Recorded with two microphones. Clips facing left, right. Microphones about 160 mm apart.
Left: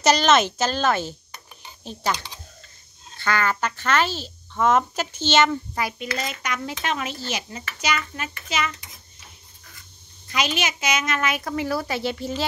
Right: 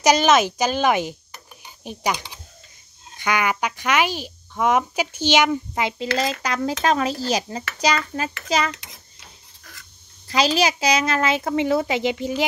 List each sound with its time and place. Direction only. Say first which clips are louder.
0.0 s speech: right 2 dB; 10° right (ahead or behind)
6.4 s speech: right 7 dB; 35° right (ahead or behind)
8.7 s a child's voice: right 2 dB; 90° right
10.3 s a child's voice: right 6 dB; 35° right (ahead or behind); by 12.4 s 15° right (ahead or behind)